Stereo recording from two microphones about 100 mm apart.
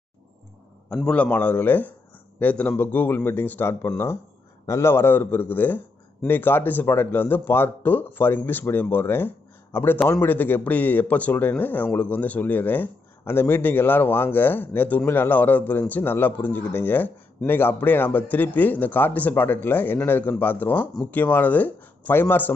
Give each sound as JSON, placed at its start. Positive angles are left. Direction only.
{"t": 0.8, "sound": "a man's voice", "side_deg": 10}